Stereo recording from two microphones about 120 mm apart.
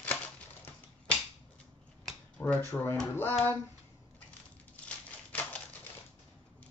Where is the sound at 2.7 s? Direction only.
15° left (ahead or behind).